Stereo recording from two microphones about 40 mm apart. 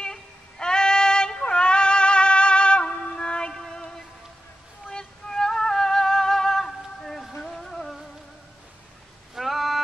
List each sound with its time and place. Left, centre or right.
0.0 s child singing: centre
4.9 s music: centre
9.3 s a sound: centre